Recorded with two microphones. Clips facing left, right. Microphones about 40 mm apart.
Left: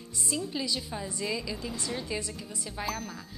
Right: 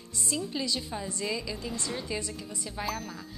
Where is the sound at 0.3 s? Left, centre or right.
Centre.